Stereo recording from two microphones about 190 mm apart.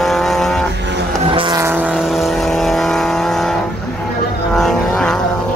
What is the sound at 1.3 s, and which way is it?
Vehicle, 25° right (ahead or behind).